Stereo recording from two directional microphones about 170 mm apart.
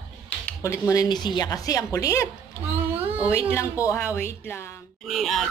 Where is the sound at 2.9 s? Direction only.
10° right (ahead or behind).